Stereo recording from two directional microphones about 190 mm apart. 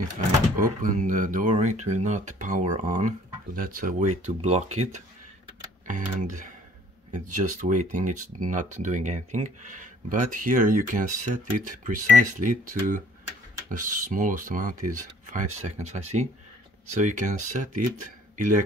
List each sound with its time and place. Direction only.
0.6 s speech: 45° right (ahead or behind)